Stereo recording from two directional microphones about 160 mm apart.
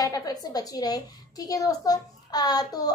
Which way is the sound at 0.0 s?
25° left (ahead or behind).